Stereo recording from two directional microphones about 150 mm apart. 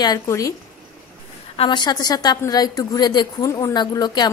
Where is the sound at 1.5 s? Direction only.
35° left (ahead or behind).